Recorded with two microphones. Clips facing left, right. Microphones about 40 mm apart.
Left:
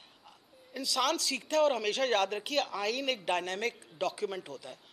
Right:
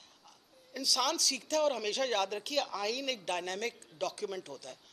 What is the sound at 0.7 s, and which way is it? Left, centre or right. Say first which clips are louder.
A man's voice: left 2 dB; centre.